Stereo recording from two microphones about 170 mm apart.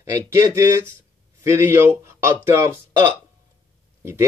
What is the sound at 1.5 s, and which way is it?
Speech, 15° right (ahead or behind).